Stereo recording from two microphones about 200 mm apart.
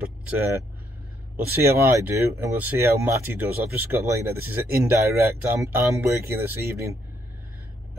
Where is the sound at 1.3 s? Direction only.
10° right (ahead or behind).